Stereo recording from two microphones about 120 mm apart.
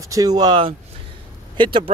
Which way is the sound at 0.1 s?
30° right (ahead or behind).